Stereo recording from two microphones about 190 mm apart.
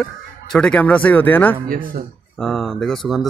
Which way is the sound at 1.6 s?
50° right (ahead or behind).